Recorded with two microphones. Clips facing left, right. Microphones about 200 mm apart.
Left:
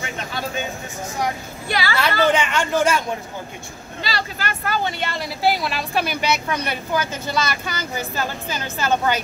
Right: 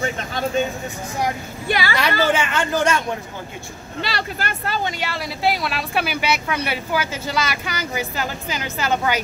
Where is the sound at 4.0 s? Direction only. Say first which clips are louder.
Right 1 dB; 65° right (ahead or behind).